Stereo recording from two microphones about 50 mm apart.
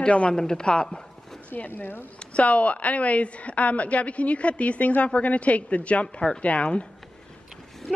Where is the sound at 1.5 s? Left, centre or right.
Left.